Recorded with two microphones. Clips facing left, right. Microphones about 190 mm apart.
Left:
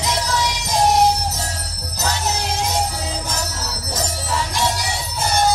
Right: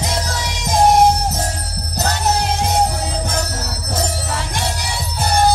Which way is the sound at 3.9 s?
55° right (ahead or behind).